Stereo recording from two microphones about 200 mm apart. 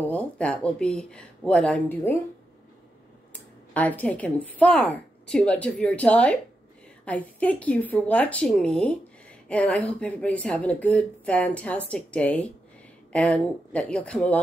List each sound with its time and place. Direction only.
0.0 s speech: 5° left (ahead or behind)
3.3 s speech: 10° left (ahead or behind)